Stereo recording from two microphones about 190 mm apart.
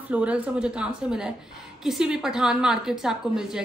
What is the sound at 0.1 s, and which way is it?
A woman's voice, 5° right (ahead or behind).